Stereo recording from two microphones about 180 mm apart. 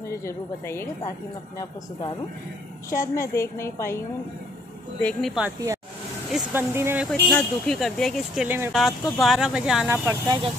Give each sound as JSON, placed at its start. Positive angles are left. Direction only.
{"t": 0.2, "sound": "a woman's voice", "side_deg": 15}
{"t": 1.6, "sound": "a woman's voice", "side_deg": 25}
{"t": 3.2, "sound": "a woman's voice", "side_deg": 15}
{"t": 5.0, "sound": "speech", "side_deg": 0}
{"t": 6.3, "sound": "speech", "side_deg": -10}
{"t": 7.1, "sound": "speech", "side_deg": 5}
{"t": 8.5, "sound": "speech", "side_deg": -15}
{"t": 8.7, "sound": "speech", "side_deg": 0}
{"t": 10.0, "sound": "speech", "side_deg": -25}